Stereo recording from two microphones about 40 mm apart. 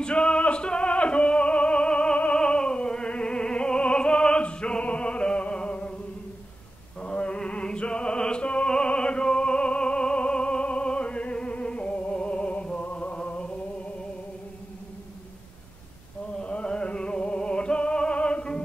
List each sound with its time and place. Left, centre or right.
0.0 s music: left
2.3 s opera: left
7.0 s music: left
16.3 s music: left